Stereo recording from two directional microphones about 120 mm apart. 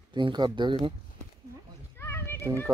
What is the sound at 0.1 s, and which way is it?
Speech, 40° right (ahead or behind).